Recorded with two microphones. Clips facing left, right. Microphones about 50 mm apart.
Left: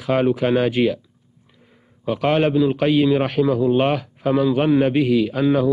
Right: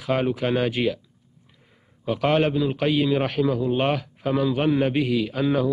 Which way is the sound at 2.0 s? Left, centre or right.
Left.